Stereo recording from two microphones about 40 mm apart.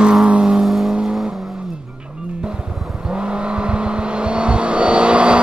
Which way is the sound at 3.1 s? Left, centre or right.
Right.